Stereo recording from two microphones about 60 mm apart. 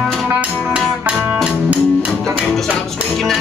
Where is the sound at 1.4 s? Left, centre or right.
Right.